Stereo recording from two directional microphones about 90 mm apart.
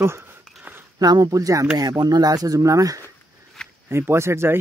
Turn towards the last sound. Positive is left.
turn(degrees=-30)  # may be behind; listen again after turning